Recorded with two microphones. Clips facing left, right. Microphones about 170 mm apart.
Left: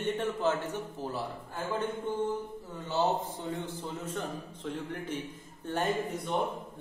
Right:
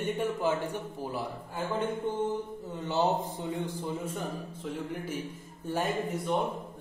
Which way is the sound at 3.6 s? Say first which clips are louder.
Right 3 dB; 10° right (ahead or behind).